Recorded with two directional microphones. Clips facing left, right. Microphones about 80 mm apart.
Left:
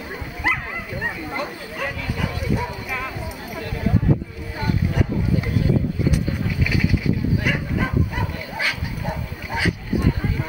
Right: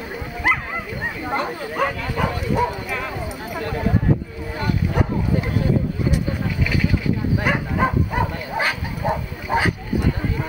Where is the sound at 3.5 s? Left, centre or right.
Right.